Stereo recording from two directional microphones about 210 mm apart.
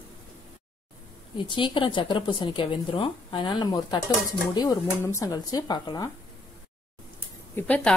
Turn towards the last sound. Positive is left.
turn(degrees=5)  # may be behind; listen again after turning